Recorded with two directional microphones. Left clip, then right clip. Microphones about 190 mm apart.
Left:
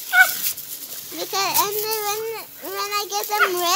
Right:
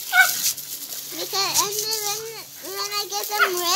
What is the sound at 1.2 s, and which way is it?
A child's voice, 60° left (ahead or behind).